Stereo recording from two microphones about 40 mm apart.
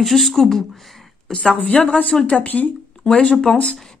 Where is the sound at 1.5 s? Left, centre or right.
Left.